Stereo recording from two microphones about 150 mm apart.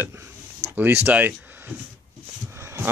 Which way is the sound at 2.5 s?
15° right (ahead or behind).